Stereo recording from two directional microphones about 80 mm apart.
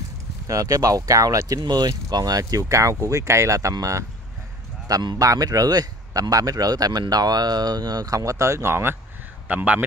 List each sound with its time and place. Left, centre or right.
0.5 s speech: right
9.5 s speech: centre